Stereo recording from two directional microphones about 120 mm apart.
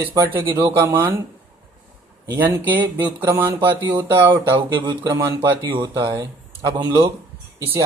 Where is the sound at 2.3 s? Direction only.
15° right (ahead or behind).